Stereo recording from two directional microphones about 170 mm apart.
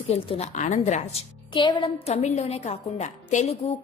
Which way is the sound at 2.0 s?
40° left (ahead or behind).